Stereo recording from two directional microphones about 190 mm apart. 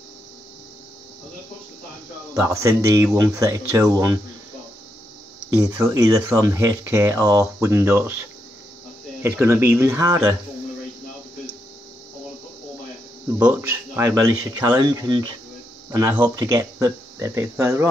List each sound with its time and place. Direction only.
2.3 s speech: 15° right (ahead or behind)
5.6 s speech: 20° right (ahead or behind)
9.2 s speech: 10° right (ahead or behind)
13.3 s speech: 10° right (ahead or behind)